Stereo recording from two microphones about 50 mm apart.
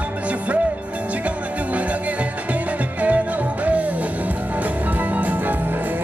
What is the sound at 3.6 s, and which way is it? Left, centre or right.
Music, right.